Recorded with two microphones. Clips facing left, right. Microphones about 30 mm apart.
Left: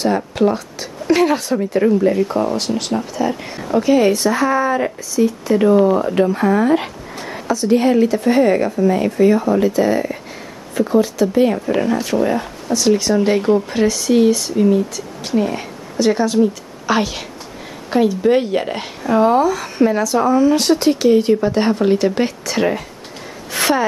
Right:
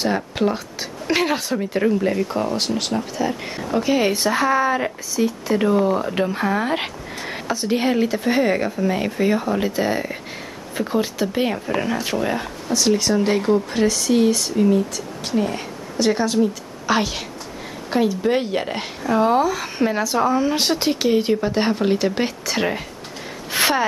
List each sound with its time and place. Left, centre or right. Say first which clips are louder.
0.0 s a woman's voice: left 4 dB; centre
2.3 s speech: left 5 dB; centre
3.4 s speech: left 5 dB; centre
4.5 s speech: left 2 dB; centre
6.1 s speech: left 6 dB; centre
6.6 s speech: left 7 dB; right
12.6 s speech: left 3 dB; centre
16.0 s a woman's voice: left 4 dB; centre